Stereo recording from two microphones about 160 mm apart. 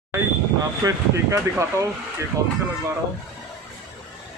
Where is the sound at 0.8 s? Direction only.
20° right (ahead or behind).